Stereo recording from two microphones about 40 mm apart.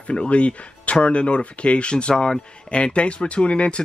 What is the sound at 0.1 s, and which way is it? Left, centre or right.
Speech, left.